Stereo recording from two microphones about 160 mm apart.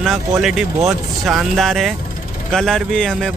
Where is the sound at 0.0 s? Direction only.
Centre (ahead or behind).